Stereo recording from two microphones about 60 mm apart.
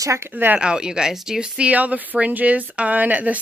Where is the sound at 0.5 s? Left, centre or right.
Centre.